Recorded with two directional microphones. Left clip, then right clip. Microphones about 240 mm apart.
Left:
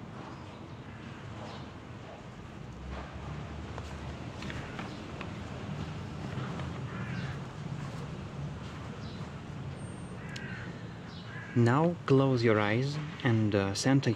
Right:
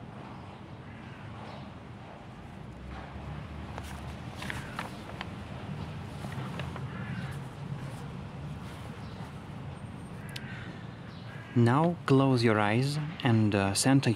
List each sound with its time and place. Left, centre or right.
11.5 s speech: centre